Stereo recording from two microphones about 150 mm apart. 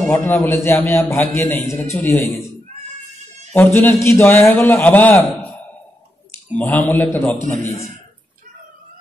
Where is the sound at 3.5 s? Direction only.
15° left (ahead or behind).